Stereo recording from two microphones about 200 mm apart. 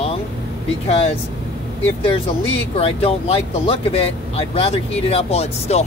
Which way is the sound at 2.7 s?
30° left (ahead or behind).